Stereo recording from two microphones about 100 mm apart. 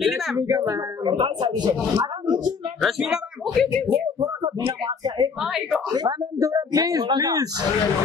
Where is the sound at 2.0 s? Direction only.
45° right (ahead or behind).